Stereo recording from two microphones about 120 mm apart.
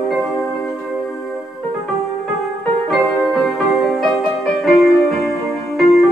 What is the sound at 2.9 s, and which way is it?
Music, centre (ahead or behind).